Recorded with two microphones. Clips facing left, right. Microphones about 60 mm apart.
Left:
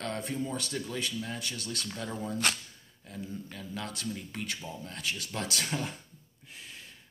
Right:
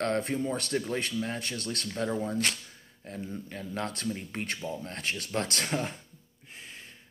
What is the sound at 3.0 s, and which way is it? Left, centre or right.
Speech, right.